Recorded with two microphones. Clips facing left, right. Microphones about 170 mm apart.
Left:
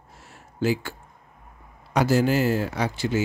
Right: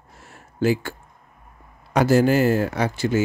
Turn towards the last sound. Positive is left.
turn(degrees=-50)  # may be behind; listen again after turning